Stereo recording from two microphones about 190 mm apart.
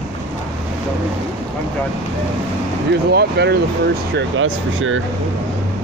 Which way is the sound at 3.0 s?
60° right (ahead or behind).